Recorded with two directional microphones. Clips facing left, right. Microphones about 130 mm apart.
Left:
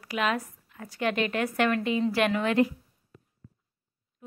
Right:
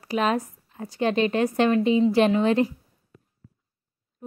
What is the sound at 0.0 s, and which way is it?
A woman's voice, 30° right (ahead or behind).